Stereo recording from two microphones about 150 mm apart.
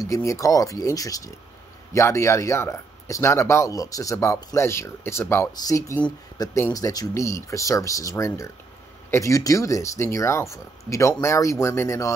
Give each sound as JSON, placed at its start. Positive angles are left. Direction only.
{"t": 0.0, "sound": "speech", "side_deg": 20}